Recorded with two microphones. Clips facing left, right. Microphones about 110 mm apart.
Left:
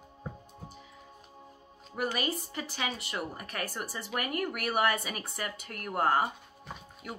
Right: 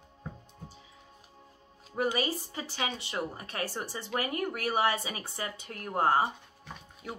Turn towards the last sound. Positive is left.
turn(degrees=-30)  # may be behind; listen again after turning